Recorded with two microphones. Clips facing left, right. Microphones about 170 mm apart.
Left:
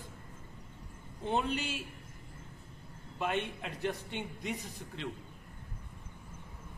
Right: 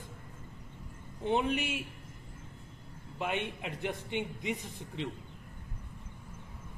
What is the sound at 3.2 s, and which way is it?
A man's voice, 15° right (ahead or behind).